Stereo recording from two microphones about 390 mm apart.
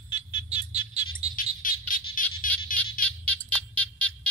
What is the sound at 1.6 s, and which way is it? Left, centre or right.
Bird, left.